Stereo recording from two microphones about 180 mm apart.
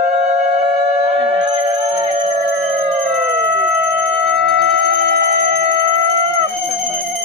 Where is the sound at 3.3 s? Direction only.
5° right (ahead or behind).